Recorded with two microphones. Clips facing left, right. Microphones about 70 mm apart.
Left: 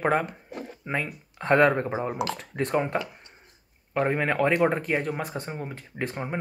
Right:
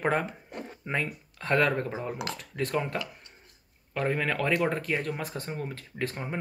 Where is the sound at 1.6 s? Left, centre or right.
Left.